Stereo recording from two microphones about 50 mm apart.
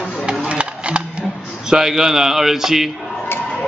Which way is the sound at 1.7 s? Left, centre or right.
Centre.